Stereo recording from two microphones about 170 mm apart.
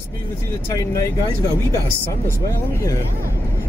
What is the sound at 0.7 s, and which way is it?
Speech, 20° left (ahead or behind).